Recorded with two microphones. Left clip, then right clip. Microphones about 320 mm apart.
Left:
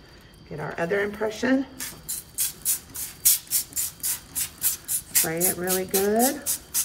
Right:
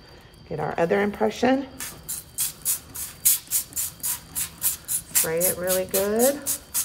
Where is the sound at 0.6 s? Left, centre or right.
Centre.